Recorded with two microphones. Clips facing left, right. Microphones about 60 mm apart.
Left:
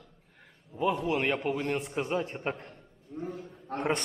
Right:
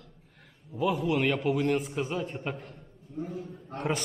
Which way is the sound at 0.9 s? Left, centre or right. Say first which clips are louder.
Right 2 dB; centre.